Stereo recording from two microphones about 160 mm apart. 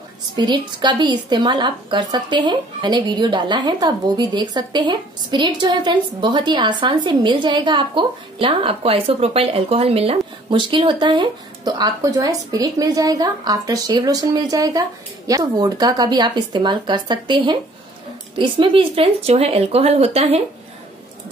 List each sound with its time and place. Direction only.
0.4 s a woman's voice: 30° right (ahead or behind)